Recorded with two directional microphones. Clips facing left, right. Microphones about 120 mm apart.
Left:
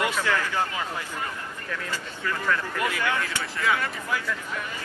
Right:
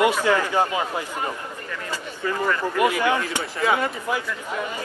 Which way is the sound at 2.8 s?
20° right (ahead or behind).